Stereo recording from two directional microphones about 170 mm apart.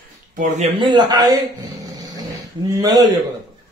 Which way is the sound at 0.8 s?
25° right (ahead or behind).